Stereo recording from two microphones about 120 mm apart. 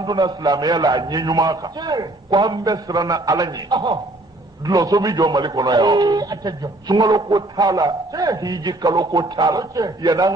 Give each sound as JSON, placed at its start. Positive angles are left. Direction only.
{"t": 0.0, "sound": "a man's voice", "side_deg": -35}